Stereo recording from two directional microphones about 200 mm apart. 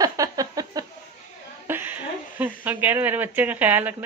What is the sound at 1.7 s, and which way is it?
Speech, 10° right (ahead or behind).